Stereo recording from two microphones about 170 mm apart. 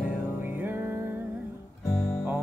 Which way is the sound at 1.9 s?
15° left (ahead or behind).